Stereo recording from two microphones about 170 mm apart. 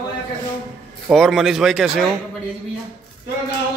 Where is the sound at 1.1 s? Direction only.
Centre (ahead or behind).